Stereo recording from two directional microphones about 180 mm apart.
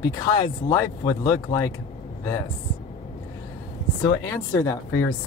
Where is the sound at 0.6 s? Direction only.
20° left (ahead or behind).